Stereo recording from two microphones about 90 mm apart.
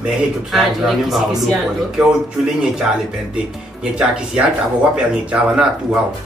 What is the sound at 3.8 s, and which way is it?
Speech, 10° right (ahead or behind).